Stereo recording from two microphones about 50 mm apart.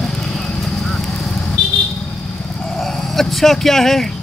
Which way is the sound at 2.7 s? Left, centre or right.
Centre.